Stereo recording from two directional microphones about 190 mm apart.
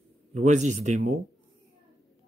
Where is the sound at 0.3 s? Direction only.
35° right (ahead or behind).